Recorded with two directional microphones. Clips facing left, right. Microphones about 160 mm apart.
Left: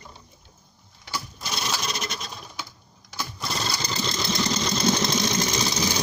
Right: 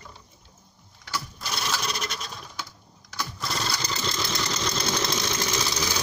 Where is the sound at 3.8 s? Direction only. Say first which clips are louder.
Left 2 dB; 30° left (ahead or behind).